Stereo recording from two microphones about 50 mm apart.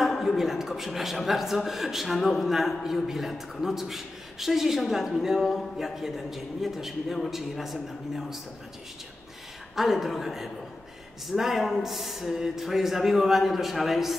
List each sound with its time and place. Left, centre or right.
0.0 s a man's voice: centre
9.8 s a man's voice: centre